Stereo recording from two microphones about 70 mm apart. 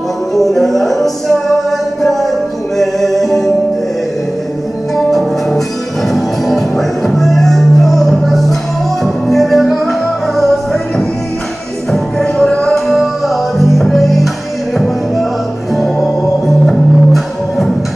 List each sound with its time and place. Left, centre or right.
0.3 s music: centre
2.8 s music: centre
4.9 s music: centre
12.7 s music: centre
15.7 s music: centre